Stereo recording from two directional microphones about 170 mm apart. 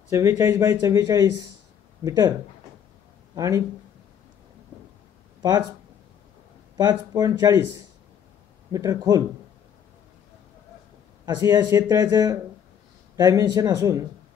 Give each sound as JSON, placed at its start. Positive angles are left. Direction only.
{"t": 0.1, "sound": "speech", "side_deg": -15}
{"t": 3.3, "sound": "speech", "side_deg": -20}
{"t": 6.8, "sound": "speech", "side_deg": -20}
{"t": 8.7, "sound": "speech", "side_deg": -20}
{"t": 11.2, "sound": "speech", "side_deg": -25}